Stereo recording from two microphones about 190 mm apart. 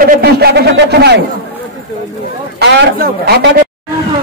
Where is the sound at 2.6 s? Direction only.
60° right (ahead or behind).